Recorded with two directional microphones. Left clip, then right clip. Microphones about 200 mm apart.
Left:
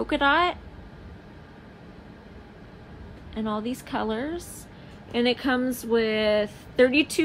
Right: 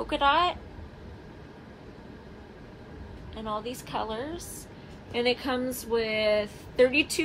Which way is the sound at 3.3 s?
50° left (ahead or behind).